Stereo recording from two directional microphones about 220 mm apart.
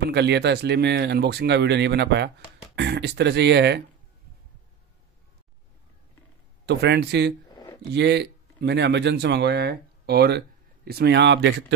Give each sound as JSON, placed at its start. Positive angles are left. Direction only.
{"t": 0.0, "sound": "speech", "side_deg": -50}
{"t": 6.6, "sound": "speech", "side_deg": -50}
{"t": 7.5, "sound": "a sound", "side_deg": 15}
{"t": 7.9, "sound": "speech", "side_deg": -50}